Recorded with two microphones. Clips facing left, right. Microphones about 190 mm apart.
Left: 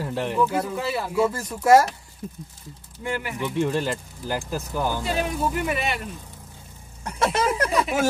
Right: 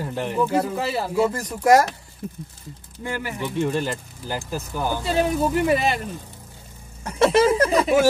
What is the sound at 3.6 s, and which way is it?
Speech, centre (ahead or behind).